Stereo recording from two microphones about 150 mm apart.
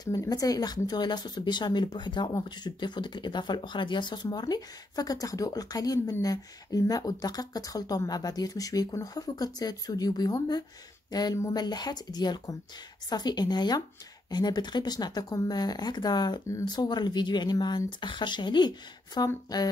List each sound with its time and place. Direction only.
0.0 s speech: 25° left (ahead or behind)